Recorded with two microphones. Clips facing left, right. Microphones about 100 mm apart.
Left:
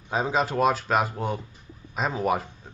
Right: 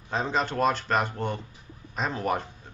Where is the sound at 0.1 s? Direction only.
5° left (ahead or behind).